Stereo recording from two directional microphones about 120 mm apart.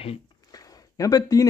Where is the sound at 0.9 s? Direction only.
30° left (ahead or behind).